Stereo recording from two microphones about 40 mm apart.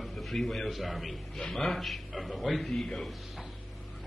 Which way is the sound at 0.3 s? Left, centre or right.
Centre.